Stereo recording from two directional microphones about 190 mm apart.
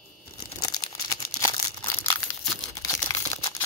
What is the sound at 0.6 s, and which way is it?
Crumpling, 20° left (ahead or behind).